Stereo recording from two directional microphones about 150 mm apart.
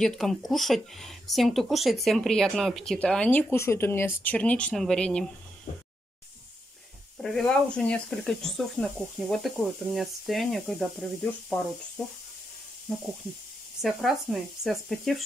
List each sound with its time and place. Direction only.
0.0 s speech: centre (ahead or behind)
5.7 s a sound: 50° left (ahead or behind)
7.2 s speech: 5° left (ahead or behind)
12.9 s speech: centre (ahead or behind)